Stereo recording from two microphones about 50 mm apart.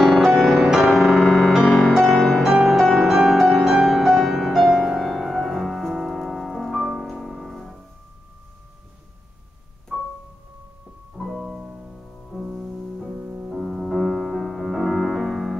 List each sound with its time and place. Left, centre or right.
0.2 s music: centre
0.9 s music: centre
1.5 s music: centre
2.4 s music: centre
11.2 s music: centre; by 13.5 s right
13.5 s music: centre